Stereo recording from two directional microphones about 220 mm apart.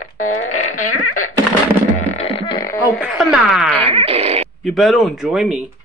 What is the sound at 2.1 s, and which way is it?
Music, 25° left (ahead or behind).